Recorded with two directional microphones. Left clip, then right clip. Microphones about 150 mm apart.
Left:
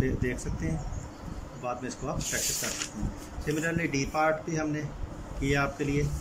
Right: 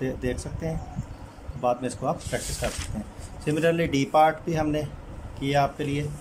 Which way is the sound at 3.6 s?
55° right (ahead or behind).